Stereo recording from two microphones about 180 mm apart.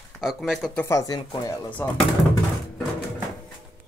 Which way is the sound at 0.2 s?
Centre (ahead or behind).